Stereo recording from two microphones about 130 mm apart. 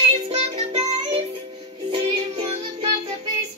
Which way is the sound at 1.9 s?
45° right (ahead or behind).